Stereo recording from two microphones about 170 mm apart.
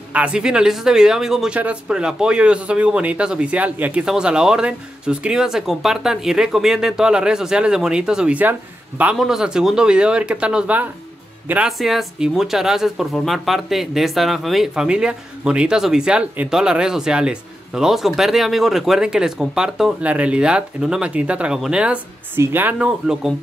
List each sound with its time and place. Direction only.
0.1 s speech: 5° right (ahead or behind)